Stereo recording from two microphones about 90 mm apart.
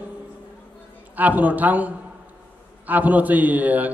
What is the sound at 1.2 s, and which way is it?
A man's voice, 20° right (ahead or behind).